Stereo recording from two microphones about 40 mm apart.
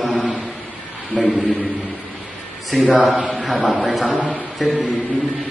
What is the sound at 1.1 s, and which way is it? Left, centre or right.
Speech, centre.